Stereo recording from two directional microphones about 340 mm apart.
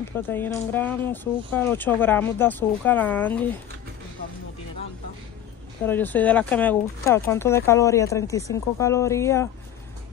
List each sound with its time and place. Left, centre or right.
0.3 s speech: centre
5.9 s speech: centre